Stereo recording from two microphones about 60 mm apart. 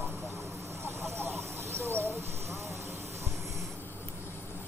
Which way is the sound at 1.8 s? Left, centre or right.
Right.